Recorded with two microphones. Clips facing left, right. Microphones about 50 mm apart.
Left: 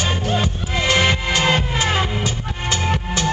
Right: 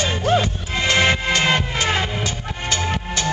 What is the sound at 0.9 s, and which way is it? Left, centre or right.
Music, right.